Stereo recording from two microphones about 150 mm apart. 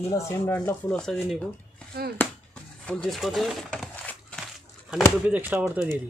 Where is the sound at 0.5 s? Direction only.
10° left (ahead or behind).